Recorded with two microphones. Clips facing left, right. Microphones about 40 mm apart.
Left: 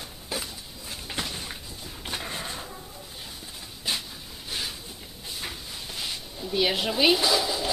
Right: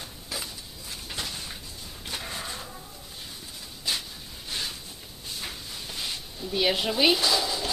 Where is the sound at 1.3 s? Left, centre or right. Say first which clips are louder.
Left 2 dB; centre.